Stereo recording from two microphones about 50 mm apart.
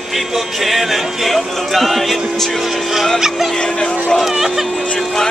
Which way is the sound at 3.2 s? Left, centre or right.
Centre.